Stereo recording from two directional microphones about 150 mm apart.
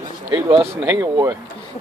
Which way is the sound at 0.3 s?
35° right (ahead or behind).